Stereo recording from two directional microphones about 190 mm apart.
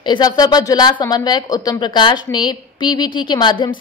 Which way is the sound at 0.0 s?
25° left (ahead or behind).